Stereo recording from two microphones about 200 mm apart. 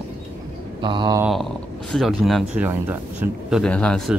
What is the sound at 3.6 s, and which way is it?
Speech, 5° left (ahead or behind).